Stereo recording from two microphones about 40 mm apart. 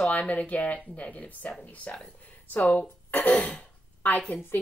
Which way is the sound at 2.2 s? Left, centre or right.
Left.